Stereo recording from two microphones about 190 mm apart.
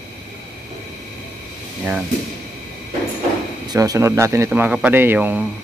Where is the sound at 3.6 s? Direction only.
20° right (ahead or behind).